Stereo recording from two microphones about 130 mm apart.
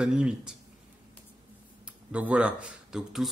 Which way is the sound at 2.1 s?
10° right (ahead or behind).